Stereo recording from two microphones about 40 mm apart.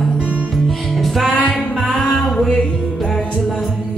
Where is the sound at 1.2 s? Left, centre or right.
Left.